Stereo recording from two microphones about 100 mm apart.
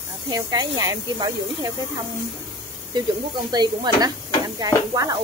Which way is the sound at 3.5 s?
45° right (ahead or behind).